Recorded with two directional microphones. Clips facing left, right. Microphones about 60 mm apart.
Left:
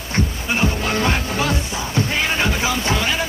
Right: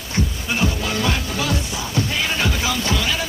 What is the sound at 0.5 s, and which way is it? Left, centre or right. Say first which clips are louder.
Music: left 2 dB; left.